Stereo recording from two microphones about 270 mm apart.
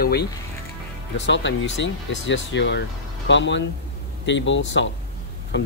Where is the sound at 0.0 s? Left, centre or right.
Left.